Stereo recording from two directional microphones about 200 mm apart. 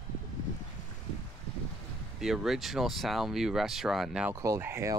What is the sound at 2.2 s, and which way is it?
Speech, centre (ahead or behind).